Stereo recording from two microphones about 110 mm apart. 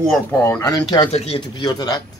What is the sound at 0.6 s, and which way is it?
Speech, 40° left (ahead or behind).